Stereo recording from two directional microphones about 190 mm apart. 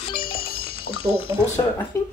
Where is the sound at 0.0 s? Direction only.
30° left (ahead or behind).